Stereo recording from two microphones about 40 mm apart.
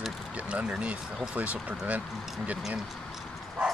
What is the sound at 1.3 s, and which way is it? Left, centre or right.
Speech, right.